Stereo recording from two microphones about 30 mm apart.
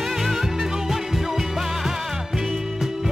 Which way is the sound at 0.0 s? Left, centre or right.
Centre.